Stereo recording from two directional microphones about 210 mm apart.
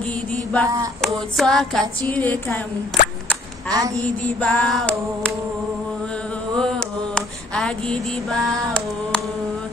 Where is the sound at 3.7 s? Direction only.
15° right (ahead or behind).